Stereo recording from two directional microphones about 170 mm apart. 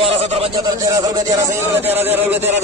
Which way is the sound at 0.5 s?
20° right (ahead or behind).